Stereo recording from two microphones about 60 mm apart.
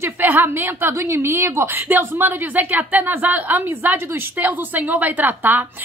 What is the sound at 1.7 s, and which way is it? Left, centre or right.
Speech, right.